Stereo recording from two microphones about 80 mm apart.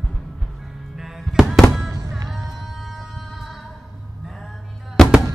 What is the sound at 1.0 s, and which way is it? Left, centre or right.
Music, centre.